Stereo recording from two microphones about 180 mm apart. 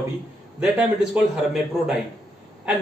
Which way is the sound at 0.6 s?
5° right (ahead or behind).